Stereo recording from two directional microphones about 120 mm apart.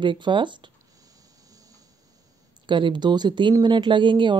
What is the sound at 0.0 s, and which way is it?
Speech, 40° right (ahead or behind).